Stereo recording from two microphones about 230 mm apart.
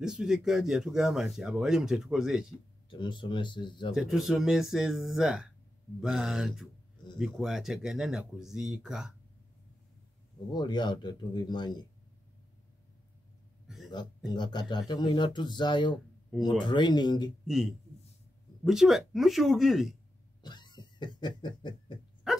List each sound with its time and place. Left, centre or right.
0.0 s speech: centre
2.9 s speech: left
3.9 s speech: centre
10.5 s speech: centre
13.7 s a sound: centre
13.9 s speech: centre
16.3 s speech: centre
16.6 s speech: centre
17.5 s speech: centre
20.4 s a sound: centre
22.3 s dog: centre